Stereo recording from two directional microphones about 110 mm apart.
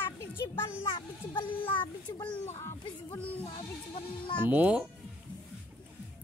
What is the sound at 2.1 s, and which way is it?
Music, 30° left (ahead or behind).